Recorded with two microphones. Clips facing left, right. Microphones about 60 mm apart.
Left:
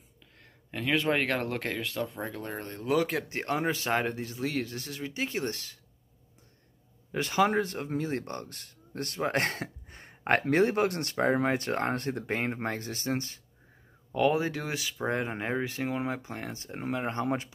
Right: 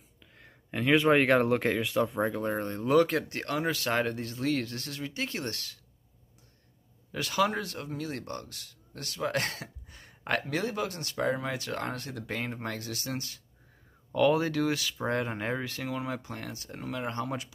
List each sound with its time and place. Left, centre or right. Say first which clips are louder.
0.4 s speech: right 4 dB; centre
3.3 s speech: left 1 dB; left
7.1 s speech: left 2 dB; left
10.4 s speech: left 7 dB; left
14.1 s speech: right 1 dB; centre